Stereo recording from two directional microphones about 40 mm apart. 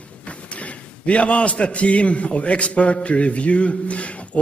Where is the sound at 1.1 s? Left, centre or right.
Left.